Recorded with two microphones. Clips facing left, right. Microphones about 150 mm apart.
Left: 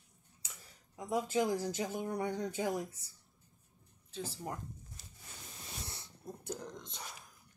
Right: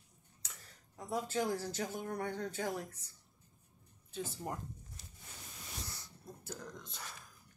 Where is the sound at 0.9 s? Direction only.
15° left (ahead or behind).